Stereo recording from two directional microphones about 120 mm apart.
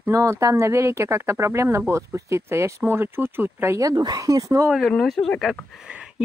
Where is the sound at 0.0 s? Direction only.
25° right (ahead or behind).